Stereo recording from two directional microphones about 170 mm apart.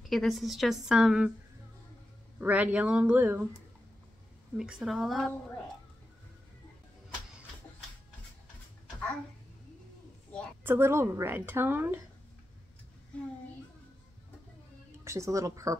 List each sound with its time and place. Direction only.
0.1 s a woman's voice: centre (ahead or behind)
2.4 s a woman's voice: 10° right (ahead or behind)
4.6 s a woman's voice: 5° right (ahead or behind)
10.6 s a woman's voice: 15° right (ahead or behind)
15.0 s speech: 20° right (ahead or behind)